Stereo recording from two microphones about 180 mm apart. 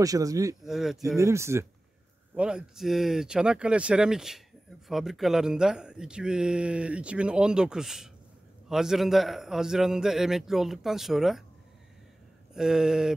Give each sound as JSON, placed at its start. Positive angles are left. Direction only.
{"t": 0.0, "sound": "speech", "side_deg": -20}
{"t": 0.7, "sound": "speech", "side_deg": 0}
{"t": 1.1, "sound": "speech", "side_deg": -15}
{"t": 12.5, "sound": "speech", "side_deg": -5}